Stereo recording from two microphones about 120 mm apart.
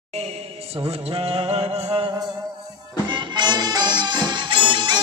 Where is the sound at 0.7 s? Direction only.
55° right (ahead or behind).